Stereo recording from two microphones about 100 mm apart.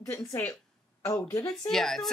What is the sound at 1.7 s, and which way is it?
Speech, 5° left (ahead or behind).